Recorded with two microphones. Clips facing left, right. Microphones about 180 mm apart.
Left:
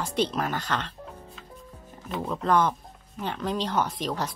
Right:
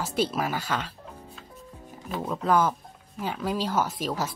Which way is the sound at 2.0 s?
5° right (ahead or behind).